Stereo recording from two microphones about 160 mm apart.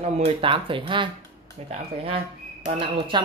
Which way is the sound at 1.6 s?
40° right (ahead or behind).